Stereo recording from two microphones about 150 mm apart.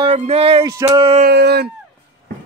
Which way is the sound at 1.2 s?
90° right.